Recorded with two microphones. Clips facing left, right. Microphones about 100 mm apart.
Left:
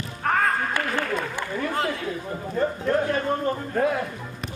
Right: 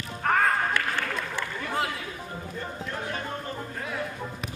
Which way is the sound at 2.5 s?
50° left (ahead or behind).